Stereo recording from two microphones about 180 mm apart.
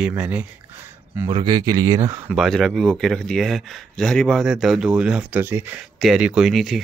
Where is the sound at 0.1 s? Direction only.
10° right (ahead or behind).